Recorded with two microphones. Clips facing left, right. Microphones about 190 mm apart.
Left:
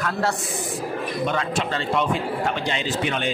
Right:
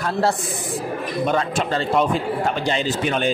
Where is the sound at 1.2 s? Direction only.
40° right (ahead or behind).